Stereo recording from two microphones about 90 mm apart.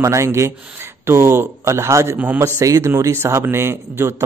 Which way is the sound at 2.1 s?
20° right (ahead or behind).